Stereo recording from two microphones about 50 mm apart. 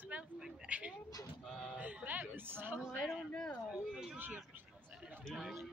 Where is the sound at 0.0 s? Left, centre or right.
Right.